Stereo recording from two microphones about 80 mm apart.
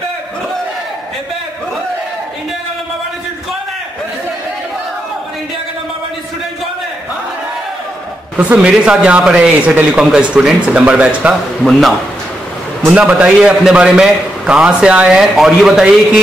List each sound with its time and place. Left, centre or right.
8.4 s a man's voice: centre
12.8 s a man's voice: centre